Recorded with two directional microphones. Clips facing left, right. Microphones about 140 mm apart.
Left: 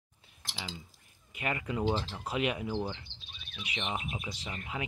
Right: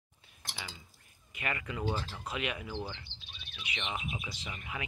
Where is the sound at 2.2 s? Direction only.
35° left (ahead or behind).